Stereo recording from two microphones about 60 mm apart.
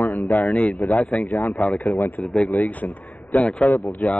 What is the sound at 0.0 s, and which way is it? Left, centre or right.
Speech, left.